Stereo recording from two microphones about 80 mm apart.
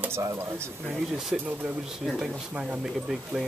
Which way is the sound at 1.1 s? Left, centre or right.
Centre.